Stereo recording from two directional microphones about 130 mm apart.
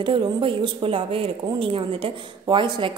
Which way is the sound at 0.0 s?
40° right (ahead or behind).